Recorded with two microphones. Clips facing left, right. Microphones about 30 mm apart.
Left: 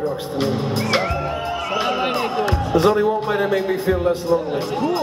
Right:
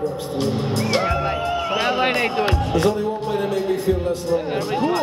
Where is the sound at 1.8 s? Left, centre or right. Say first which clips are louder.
Right 2 dB; right.